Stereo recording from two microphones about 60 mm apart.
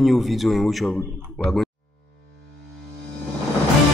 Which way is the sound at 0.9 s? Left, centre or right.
Centre.